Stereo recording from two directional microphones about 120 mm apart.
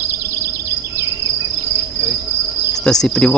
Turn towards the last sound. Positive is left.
turn(degrees=5)  # may be behind; listen again after turning